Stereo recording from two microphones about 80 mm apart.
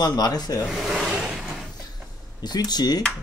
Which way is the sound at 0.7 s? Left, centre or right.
Centre.